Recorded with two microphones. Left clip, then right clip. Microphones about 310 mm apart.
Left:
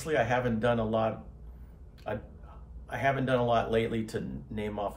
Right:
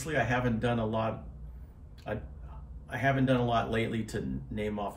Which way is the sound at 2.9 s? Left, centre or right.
Centre.